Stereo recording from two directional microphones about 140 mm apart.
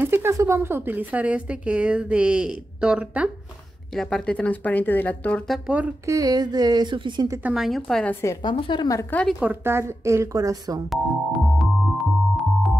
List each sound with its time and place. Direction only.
0.0 s a woman's voice: 15° right (ahead or behind)
3.9 s speech: 5° left (ahead or behind)
5.5 s a woman's voice: 10° right (ahead or behind)
6.0 s a woman's voice: 25° right (ahead or behind)
7.4 s a woman's voice: 5° right (ahead or behind); by 8.4 s 15° left (ahead or behind)
8.4 s a woman's voice: 35° left (ahead or behind)
9.4 s a woman's voice: 15° right (ahead or behind)
11.5 s music: centre (ahead or behind)